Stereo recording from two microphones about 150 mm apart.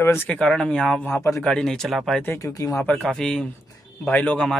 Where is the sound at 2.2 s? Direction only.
20° left (ahead or behind).